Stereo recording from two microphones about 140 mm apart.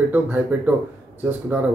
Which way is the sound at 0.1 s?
10° right (ahead or behind).